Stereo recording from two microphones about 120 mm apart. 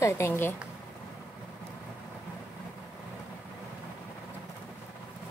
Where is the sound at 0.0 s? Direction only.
20° left (ahead or behind).